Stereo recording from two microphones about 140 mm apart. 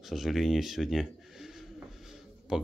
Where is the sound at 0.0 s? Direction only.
Centre (ahead or behind).